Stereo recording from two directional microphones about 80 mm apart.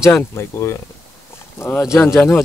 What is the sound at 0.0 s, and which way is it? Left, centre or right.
Speech, left.